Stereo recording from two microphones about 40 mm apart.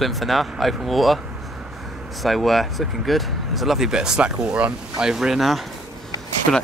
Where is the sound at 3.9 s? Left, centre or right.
Centre.